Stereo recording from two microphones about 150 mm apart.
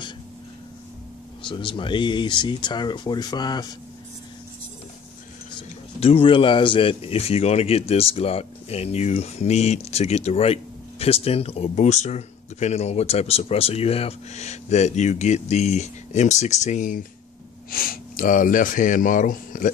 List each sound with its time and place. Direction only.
1.4 s speech: 35° left (ahead or behind)
5.9 s speech: 40° left (ahead or behind); by 17.0 s 55° left (ahead or behind)
17.6 s speech: 75° left (ahead or behind)